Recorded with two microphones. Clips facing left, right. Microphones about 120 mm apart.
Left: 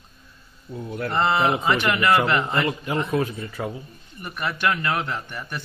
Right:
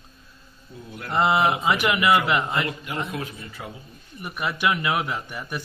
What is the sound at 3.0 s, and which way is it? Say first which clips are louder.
Speech: left 8 dB; 50° left (ahead or behind).